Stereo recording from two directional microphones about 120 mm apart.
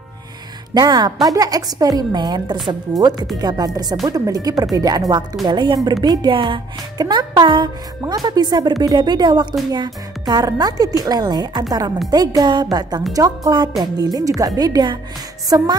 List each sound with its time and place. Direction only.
0.7 s speech: 35° right (ahead or behind)
15.5 s music: 30° right (ahead or behind)